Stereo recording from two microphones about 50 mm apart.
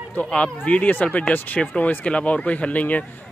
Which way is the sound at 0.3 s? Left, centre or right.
Left.